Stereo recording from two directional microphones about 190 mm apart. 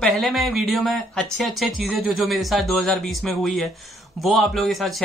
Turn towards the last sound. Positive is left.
turn(degrees=0)  # may be behind; listen again after turning